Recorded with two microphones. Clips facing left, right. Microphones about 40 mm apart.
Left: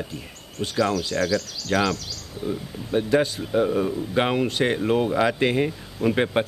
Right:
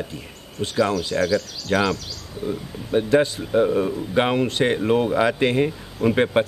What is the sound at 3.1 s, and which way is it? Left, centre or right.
Speech, centre.